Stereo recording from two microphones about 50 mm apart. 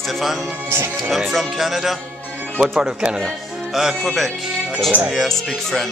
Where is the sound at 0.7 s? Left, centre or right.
Right.